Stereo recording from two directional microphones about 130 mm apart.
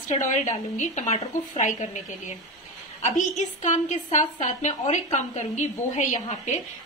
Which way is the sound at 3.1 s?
65° left (ahead or behind).